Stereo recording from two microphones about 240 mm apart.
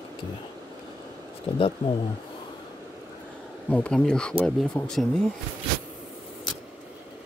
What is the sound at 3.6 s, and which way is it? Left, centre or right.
Speech, centre.